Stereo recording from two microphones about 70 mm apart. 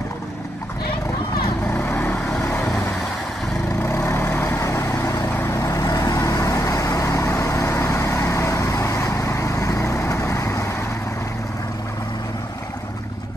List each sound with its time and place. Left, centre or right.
1.7 s vehicle: left
3.9 s vehicle: left